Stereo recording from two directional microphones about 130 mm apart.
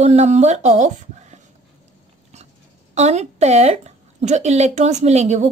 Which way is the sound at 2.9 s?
60° right (ahead or behind).